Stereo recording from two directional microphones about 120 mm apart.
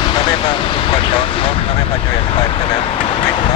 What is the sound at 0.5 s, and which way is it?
Speech, 45° left (ahead or behind).